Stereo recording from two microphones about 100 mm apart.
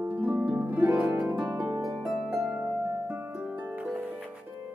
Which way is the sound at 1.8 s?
5° right (ahead or behind).